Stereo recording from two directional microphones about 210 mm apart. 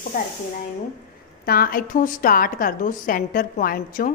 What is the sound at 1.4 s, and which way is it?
A woman's voice, 45° left (ahead or behind).